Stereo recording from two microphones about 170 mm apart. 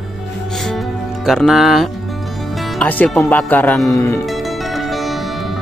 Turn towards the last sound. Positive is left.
turn(degrees=0)  # may be behind; listen again after turning